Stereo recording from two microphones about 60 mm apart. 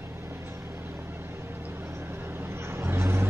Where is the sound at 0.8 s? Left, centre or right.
Right.